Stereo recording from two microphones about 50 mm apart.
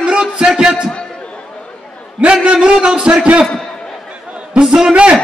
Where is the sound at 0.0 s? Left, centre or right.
Centre.